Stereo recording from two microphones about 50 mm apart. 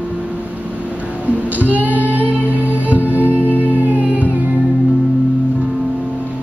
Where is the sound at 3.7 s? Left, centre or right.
Right.